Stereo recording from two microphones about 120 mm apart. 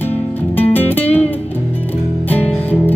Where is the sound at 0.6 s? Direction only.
15° left (ahead or behind).